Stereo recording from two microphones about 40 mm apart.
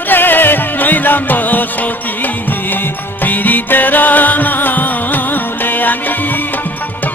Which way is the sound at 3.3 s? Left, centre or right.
Left.